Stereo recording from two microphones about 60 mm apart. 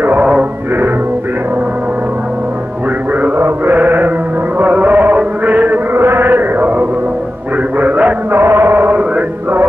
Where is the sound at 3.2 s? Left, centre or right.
Right.